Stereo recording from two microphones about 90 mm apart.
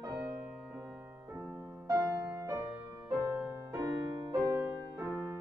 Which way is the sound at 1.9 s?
35° right (ahead or behind).